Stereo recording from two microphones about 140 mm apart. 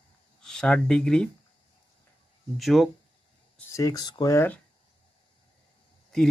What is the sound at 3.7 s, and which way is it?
Speech, 25° left (ahead or behind).